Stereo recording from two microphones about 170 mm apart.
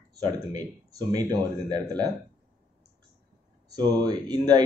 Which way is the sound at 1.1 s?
25° right (ahead or behind).